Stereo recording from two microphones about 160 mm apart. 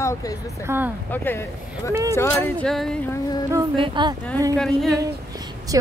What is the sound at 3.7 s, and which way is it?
Speech, 30° right (ahead or behind).